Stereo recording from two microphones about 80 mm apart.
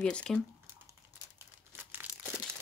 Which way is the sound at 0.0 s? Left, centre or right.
Centre.